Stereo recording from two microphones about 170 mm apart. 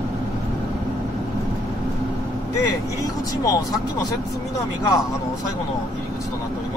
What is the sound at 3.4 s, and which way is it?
Speech, 20° left (ahead or behind).